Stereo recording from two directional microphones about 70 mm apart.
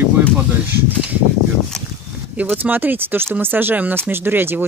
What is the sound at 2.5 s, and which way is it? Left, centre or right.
Speech, right.